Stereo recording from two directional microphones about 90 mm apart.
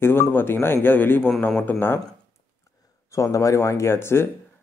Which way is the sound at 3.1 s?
35° left (ahead or behind).